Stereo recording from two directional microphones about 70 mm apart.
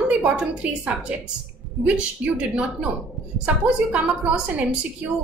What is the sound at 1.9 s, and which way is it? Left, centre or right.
A woman's voice, centre.